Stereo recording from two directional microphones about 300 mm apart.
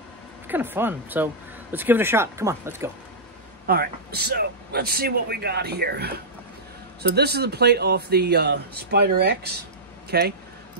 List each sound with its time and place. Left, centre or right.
0.5 s speech: centre
3.6 s a man's voice: right